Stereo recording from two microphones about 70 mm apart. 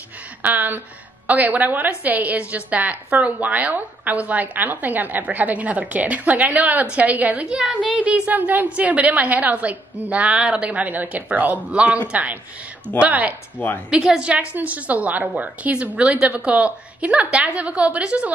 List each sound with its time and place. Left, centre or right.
0.4 s a woman's voice: right